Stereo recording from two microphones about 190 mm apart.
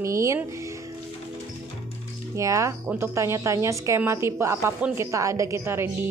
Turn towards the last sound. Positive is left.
turn(degrees=-15)  # may be behind; listen again after turning